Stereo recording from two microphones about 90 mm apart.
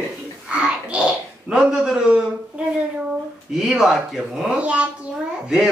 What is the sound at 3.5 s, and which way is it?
A child's voice, 5° right (ahead or behind).